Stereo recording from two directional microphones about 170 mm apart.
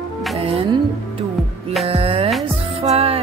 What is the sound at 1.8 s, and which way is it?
Music, 35° right (ahead or behind).